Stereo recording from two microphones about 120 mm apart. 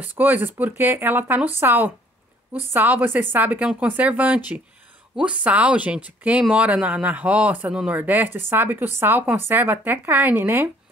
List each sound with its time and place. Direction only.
0.0 s a man's voice: 15° right (ahead or behind)